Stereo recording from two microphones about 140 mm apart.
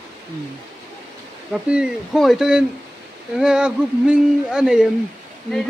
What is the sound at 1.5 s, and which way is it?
Speech, 5° right (ahead or behind).